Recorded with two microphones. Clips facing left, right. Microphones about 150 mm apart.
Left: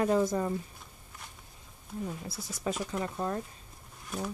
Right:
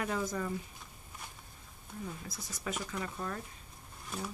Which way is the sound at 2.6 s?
30° left (ahead or behind).